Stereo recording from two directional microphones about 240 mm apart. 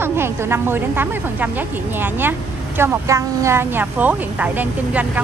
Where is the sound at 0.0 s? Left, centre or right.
Centre.